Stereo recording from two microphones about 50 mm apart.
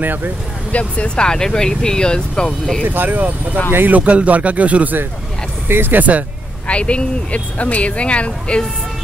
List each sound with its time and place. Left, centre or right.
0.0 s speech: right
0.7 s speech: left
2.8 s speech: right
5.7 s speech: right
6.7 s speech: left